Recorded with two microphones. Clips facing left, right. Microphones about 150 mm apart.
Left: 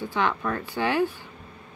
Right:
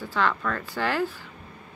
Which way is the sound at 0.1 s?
20° left (ahead or behind).